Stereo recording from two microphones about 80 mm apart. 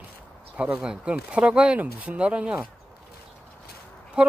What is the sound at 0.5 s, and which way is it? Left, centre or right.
Speech, centre.